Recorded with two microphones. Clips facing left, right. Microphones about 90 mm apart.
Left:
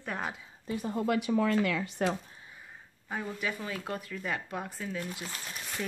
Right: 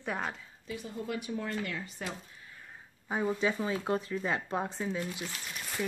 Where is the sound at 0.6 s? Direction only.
45° left (ahead or behind).